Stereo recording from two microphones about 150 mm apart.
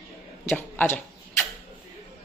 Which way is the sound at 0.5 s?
15° left (ahead or behind).